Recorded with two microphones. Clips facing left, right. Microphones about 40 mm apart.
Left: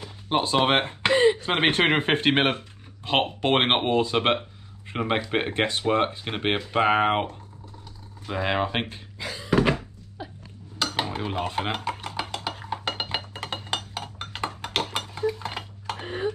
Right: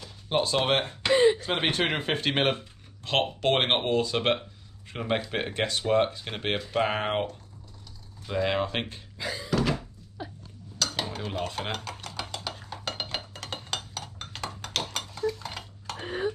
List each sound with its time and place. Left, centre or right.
0.0 s speech: left
1.1 s a sound: left
1.6 s speech: left; by 9.0 s centre
9.2 s thunk: left
9.5 s thunk: left
10.8 s stir: left
13.9 s dishes: left